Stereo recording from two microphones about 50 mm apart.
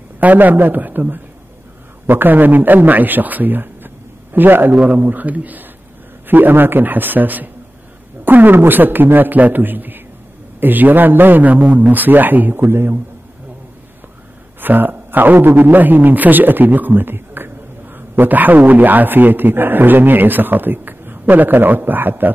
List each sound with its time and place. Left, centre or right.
0.2 s a man's voice: right
14.6 s a man's voice: right